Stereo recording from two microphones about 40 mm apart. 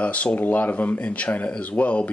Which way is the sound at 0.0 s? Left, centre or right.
Left.